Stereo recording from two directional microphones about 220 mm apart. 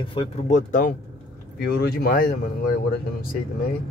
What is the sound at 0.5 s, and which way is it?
Speech, 35° left (ahead or behind).